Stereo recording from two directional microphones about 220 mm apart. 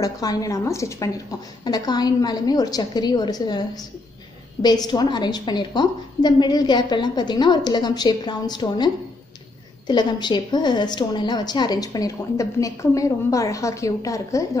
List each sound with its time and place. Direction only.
0.0 s a woman's voice: 15° left (ahead or behind)